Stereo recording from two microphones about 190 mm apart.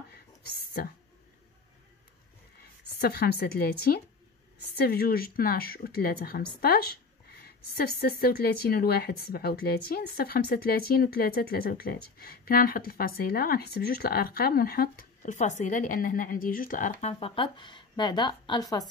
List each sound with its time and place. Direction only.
3.0 s a woman's voice: 55° left (ahead or behind)
17.1 s a woman's voice: 25° left (ahead or behind)